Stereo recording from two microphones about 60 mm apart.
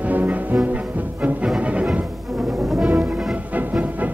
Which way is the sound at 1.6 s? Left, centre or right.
Right.